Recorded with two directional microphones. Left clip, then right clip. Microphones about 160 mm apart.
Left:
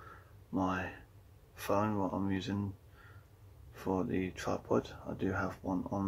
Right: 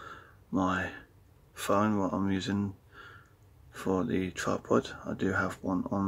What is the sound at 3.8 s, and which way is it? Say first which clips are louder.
Speech: right 4 dB; 40° right (ahead or behind).